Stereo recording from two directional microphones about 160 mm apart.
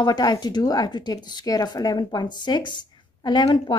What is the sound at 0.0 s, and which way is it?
A woman's voice, 25° left (ahead or behind).